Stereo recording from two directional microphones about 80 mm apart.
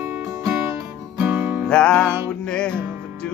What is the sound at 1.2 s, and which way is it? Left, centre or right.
Music, right.